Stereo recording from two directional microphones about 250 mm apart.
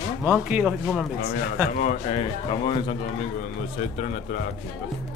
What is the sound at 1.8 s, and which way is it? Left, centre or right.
Speech, left.